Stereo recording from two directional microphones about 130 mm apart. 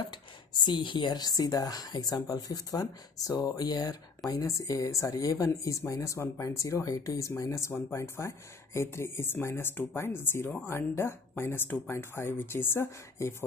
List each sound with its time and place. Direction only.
0.0 s speech: 35° left (ahead or behind); by 13.3 s 15° left (ahead or behind)